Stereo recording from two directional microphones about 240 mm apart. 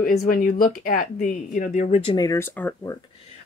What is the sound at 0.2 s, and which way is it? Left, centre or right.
Speech, left.